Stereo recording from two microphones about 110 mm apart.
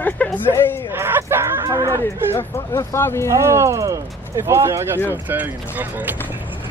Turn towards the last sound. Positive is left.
turn(degrees=-15)  # may be behind; listen again after turning